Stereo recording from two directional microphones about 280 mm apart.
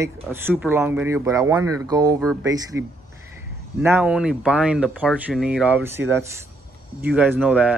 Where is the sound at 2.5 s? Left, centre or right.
Centre.